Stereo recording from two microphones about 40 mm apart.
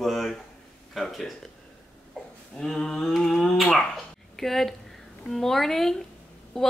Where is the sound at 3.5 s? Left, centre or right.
Centre.